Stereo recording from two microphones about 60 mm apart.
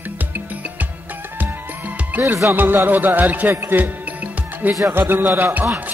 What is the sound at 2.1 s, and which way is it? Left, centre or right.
Music, right.